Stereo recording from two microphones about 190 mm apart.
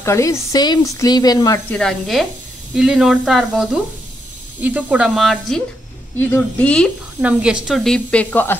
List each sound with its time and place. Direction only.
0.0 s speech: 15° left (ahead or behind)
1.7 s speech: 5° left (ahead or behind)
7.2 s speech: 5° right (ahead or behind)